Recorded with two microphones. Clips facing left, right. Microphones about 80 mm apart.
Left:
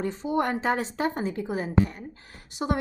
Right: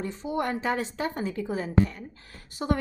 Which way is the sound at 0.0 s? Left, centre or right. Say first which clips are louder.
Left 3 dB; left.